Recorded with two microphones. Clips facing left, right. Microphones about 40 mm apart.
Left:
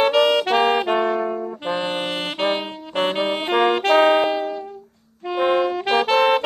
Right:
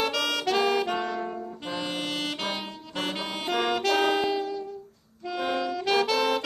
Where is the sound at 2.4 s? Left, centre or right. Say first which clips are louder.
Left 10 dB; left.